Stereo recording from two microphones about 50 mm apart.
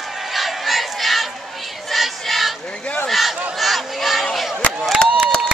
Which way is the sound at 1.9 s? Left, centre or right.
Centre.